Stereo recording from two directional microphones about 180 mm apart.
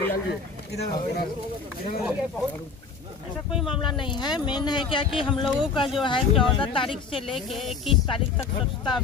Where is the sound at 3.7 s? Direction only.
25° left (ahead or behind).